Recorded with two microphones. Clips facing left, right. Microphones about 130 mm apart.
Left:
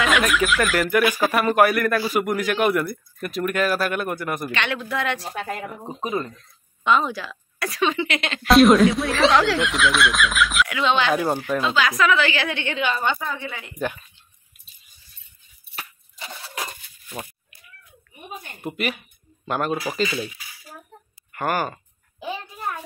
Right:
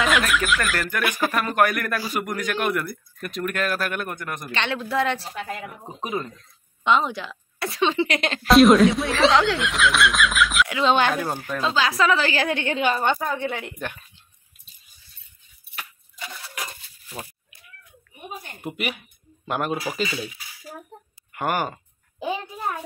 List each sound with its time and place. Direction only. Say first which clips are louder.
0.0 s speech: left 2 dB; centre (ahead or behind)
4.5 s a woman's voice: even; 30° right (ahead or behind)
5.3 s speech: left 2 dB; 50° left (ahead or behind)
6.8 s a woman's voice: left 1 dB; 20° right (ahead or behind); by 8.4 s 40° right (ahead or behind)
8.5 s speech: even; centre (ahead or behind)
10.7 s speech: right 1 dB; 35° right (ahead or behind)
11.1 s speech: left 5 dB; 10° left (ahead or behind)
11.6 s a woman's voice: right 1 dB; 30° right (ahead or behind); by 13.7 s 60° right (ahead or behind)
15.7 s a sound: left 1 dB; 30° left (ahead or behind)
18.7 s speech: left 2 dB; 10° right (ahead or behind)
21.3 s speech: left 1 dB; 15° right (ahead or behind)